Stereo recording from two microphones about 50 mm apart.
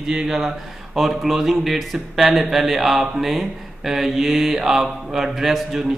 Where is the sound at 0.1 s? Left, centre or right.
Centre.